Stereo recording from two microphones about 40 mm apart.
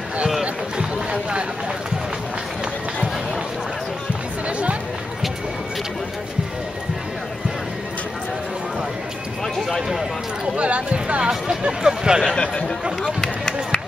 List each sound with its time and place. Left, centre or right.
4.5 s chatter: right
9.4 s clip-clop: centre
10.5 s a sound: right
12.4 s speech: left
13.2 s run: centre